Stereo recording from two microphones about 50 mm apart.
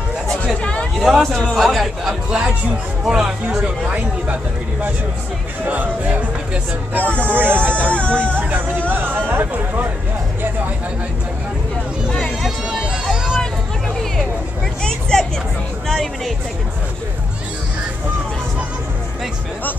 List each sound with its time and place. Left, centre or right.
0.6 s a sound: left
1.0 s a man's voice: centre
2.2 s speech: centre
3.6 s speech: right
5.7 s speech: right
6.9 s speech: right
7.9 s speech: left
8.4 s speech: right
9.5 s speech: right
13.1 s hubbub: centre
14.8 s vehicle: centre